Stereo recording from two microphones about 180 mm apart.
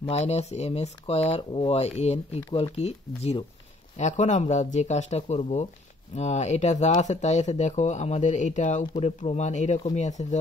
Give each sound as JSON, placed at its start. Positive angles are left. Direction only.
{"t": 0.0, "sound": "speech", "side_deg": 35}